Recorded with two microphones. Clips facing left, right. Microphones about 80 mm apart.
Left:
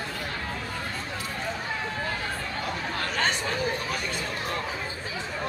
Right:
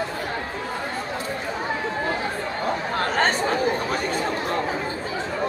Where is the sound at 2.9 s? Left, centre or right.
Right.